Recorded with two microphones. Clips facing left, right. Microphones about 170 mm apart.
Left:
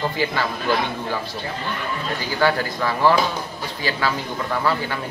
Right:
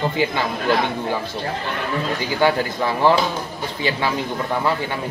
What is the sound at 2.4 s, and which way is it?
Speech, 20° right (ahead or behind).